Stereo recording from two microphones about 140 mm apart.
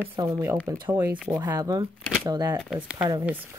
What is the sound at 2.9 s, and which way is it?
Speech, 25° right (ahead or behind).